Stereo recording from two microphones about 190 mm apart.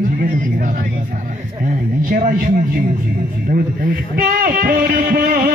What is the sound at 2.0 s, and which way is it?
A man's voice, 50° right (ahead or behind).